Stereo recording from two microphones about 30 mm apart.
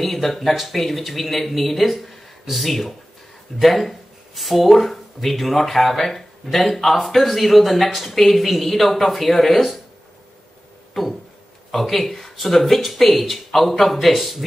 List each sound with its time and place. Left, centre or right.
0.0 s speech: centre
11.7 s speech: centre